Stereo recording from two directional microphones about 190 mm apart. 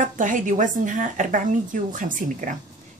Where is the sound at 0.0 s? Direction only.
40° right (ahead or behind).